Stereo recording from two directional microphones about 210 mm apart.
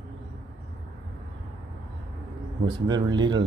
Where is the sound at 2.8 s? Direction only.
20° right (ahead or behind).